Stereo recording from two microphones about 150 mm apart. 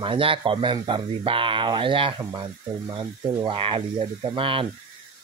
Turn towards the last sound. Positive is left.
turn(degrees=-35)  # may be behind; listen again after turning